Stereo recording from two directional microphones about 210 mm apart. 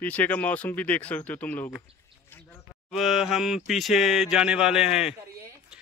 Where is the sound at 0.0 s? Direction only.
5° left (ahead or behind).